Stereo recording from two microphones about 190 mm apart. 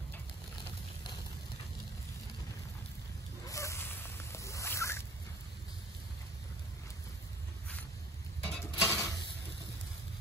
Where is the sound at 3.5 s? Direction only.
15° left (ahead or behind).